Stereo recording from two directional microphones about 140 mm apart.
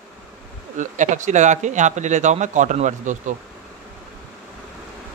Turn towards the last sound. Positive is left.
turn(degrees=-60)  # may be behind; listen again after turning